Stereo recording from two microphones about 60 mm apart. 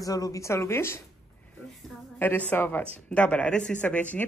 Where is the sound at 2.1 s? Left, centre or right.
Left.